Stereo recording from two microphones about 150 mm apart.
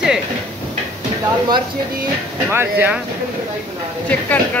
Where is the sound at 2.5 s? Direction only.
15° right (ahead or behind).